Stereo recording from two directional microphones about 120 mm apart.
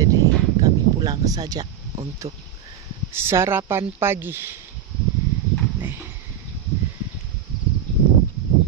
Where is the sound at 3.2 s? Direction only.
20° right (ahead or behind).